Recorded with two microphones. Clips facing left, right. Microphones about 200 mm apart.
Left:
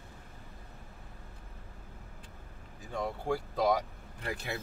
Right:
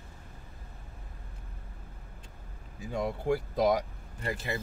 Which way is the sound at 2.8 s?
10° right (ahead or behind).